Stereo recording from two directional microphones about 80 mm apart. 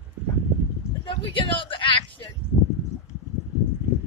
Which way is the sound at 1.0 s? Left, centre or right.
Left.